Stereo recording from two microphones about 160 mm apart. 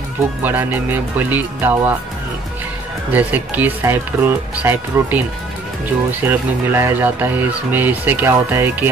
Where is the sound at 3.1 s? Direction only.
10° right (ahead or behind).